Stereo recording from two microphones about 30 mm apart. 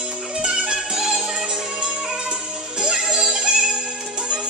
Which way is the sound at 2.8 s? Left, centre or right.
Right.